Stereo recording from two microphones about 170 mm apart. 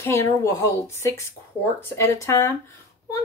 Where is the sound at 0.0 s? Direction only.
15° left (ahead or behind).